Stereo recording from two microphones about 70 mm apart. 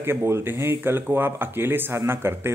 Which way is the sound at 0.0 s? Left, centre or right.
Right.